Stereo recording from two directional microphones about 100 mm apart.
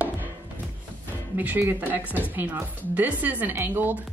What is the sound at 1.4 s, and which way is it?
A woman's voice, 20° right (ahead or behind).